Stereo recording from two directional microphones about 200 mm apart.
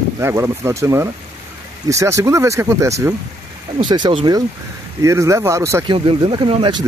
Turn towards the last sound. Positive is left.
turn(degrees=-25)  # may be behind; listen again after turning